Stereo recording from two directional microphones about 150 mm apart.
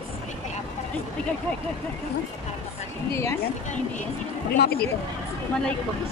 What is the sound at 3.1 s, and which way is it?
Speech, 20° left (ahead or behind).